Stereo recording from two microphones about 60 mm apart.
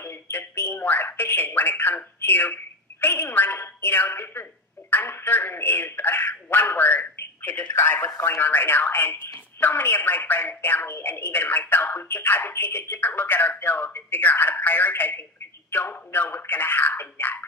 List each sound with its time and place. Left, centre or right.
0.0 s speech: left
12.1 s speech: left